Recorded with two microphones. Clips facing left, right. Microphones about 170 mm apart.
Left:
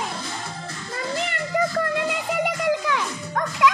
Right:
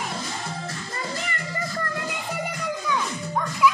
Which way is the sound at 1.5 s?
90° left.